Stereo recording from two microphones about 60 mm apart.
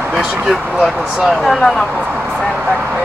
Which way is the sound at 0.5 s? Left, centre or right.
Centre.